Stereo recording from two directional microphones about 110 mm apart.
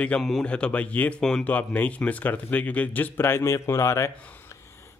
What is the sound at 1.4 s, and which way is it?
A man's voice, 15° left (ahead or behind).